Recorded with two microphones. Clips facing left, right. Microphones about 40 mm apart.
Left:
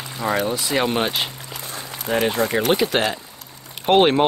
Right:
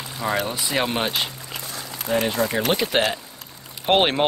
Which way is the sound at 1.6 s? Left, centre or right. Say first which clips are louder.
Left 3 dB; left.